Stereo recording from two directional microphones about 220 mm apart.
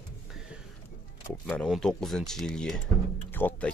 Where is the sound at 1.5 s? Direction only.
5° left (ahead or behind).